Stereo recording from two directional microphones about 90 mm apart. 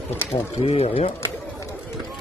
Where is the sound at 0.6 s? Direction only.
90° left.